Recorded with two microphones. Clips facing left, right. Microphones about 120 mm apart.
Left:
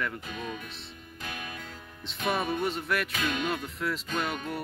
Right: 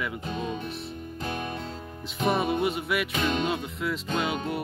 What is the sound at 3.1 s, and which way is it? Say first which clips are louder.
Speech: right 4 dB; 30° right (ahead or behind).